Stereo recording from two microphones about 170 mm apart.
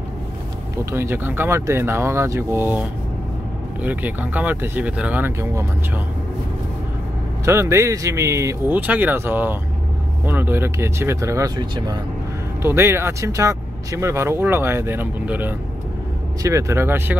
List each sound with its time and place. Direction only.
0.9 s speech: 15° right (ahead or behind)
7.4 s speech: 15° right (ahead or behind)
12.6 s speech: 15° right (ahead or behind)